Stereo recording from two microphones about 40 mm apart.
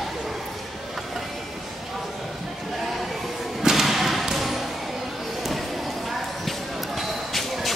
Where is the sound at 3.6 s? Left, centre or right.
Centre.